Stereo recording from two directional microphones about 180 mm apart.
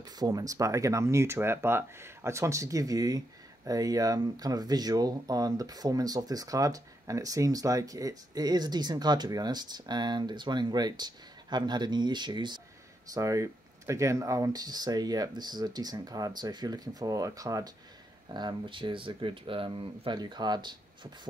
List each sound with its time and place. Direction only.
0.2 s speech: 20° right (ahead or behind)